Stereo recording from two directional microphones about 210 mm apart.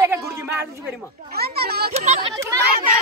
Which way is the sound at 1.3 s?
50° right (ahead or behind).